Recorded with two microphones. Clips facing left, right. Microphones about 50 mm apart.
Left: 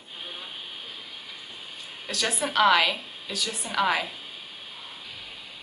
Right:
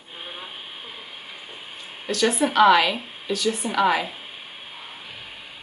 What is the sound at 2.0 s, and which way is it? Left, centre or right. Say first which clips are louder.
A woman's voice: right 7 dB; centre.